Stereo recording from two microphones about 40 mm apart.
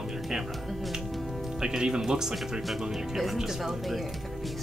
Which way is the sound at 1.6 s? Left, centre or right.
Centre.